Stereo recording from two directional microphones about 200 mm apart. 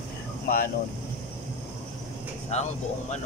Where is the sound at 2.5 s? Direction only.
35° left (ahead or behind).